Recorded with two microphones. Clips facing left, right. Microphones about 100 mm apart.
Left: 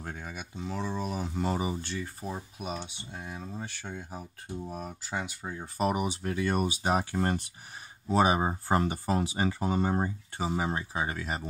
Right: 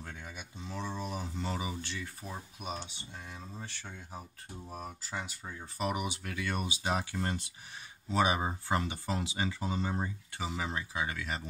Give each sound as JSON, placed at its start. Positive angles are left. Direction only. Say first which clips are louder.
{"t": 0.0, "sound": "a sound", "louder": "left 6 dB", "side_deg": 45}
{"t": 0.3, "sound": "speech", "louder": "left 8 dB", "side_deg": 70}
{"t": 2.8, "sound": "speech", "louder": "left 5 dB", "side_deg": 50}
{"t": 8.1, "sound": "speech", "louder": "left 5 dB", "side_deg": 35}